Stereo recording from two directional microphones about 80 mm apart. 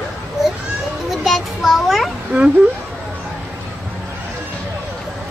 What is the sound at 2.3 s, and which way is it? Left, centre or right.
Speech, right.